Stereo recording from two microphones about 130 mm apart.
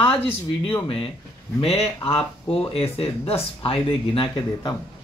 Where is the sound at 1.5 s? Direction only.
50° left (ahead or behind).